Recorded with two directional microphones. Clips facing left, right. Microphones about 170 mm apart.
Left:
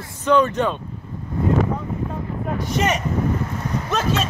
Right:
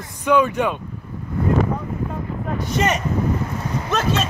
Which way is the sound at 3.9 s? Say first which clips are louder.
Right 1 dB; centre (ahead or behind).